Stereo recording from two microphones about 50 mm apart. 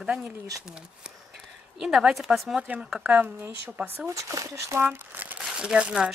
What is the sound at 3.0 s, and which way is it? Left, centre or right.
Speech, right.